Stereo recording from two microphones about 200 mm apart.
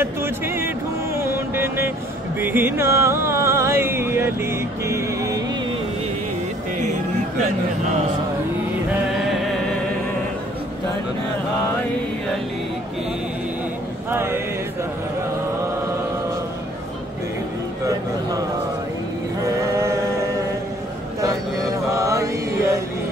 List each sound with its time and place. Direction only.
0.0 s music: 10° right (ahead or behind)
9.1 s music: centre (ahead or behind)
14.1 s chant: 10° right (ahead or behind)
19.4 s a sound: 15° right (ahead or behind)
21.2 s mantra: 15° right (ahead or behind)